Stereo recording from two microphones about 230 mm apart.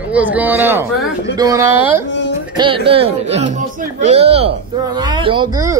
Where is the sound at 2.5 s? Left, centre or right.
Right.